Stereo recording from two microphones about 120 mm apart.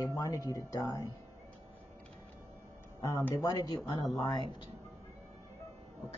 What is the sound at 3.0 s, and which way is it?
Speech, 30° left (ahead or behind).